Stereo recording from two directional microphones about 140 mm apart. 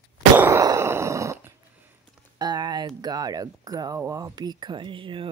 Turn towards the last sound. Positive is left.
turn(degrees=-35)  # may be behind; listen again after turning